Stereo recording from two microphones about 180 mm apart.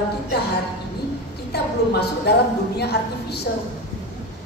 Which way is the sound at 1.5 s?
65° left (ahead or behind).